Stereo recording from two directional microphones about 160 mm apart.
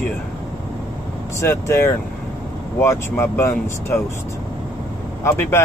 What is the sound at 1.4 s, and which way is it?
Speech, 15° left (ahead or behind).